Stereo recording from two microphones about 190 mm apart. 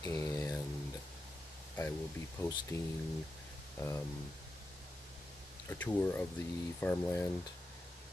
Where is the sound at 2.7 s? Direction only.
15° left (ahead or behind).